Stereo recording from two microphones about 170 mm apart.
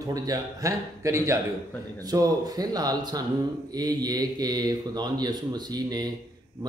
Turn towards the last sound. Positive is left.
turn(degrees=-25)  # may be behind; listen again after turning